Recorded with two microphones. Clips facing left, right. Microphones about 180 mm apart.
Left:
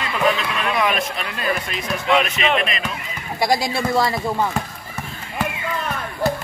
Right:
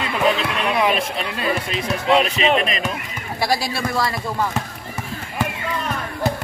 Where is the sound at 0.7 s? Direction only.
30° right (ahead or behind).